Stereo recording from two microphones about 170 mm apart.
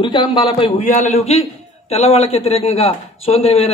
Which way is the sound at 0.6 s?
40° left (ahead or behind).